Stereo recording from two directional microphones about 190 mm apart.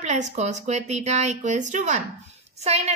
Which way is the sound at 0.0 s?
35° right (ahead or behind).